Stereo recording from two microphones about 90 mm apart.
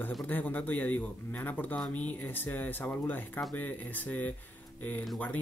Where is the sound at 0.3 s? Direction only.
20° left (ahead or behind).